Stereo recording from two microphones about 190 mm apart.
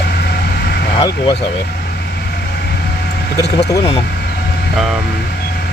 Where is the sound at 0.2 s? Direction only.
55° left (ahead or behind).